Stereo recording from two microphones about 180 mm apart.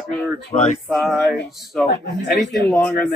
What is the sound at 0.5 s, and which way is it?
Male singing, 20° left (ahead or behind).